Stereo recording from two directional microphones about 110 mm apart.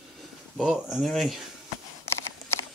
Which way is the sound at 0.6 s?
5° right (ahead or behind).